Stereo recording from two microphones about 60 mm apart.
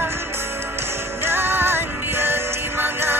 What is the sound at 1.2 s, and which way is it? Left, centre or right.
Music, right.